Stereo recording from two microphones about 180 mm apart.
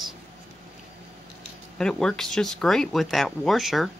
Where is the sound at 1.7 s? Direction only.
5° left (ahead or behind).